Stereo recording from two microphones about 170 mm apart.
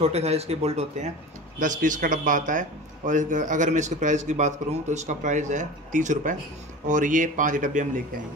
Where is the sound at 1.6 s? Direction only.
50° right (ahead or behind).